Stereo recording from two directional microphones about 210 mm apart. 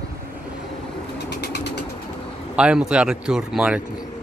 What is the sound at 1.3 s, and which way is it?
Bird, 55° left (ahead or behind).